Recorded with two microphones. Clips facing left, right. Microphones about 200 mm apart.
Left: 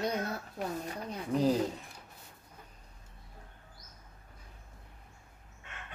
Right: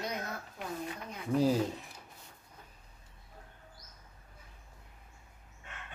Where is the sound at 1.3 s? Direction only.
5° right (ahead or behind).